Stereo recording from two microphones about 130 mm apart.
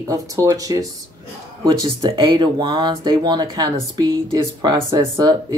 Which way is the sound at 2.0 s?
35° right (ahead or behind).